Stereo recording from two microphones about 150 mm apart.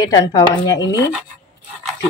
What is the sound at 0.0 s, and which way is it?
Speech, 25° left (ahead or behind).